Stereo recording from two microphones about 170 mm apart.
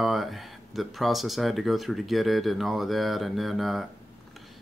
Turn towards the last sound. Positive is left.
turn(degrees=0)  # may be behind; listen again after turning